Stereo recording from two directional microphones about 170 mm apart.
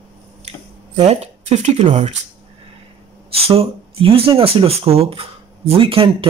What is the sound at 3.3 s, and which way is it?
Speech, 35° right (ahead or behind).